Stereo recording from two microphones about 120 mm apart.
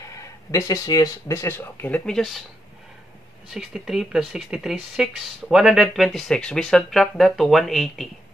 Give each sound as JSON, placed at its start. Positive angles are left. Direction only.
{"t": 0.0, "sound": "speech", "side_deg": 25}
{"t": 3.5, "sound": "speech", "side_deg": -5}